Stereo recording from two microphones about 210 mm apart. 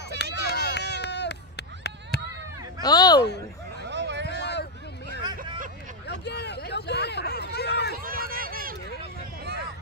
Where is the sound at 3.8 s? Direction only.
55° right (ahead or behind).